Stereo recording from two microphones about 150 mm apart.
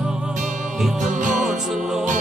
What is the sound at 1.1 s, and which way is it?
Music, 55° right (ahead or behind).